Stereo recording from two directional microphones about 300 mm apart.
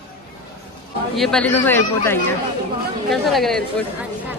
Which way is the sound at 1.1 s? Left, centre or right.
Centre.